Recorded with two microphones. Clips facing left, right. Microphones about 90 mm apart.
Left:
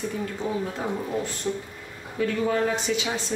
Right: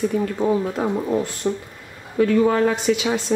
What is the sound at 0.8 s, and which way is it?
Speech, 85° right.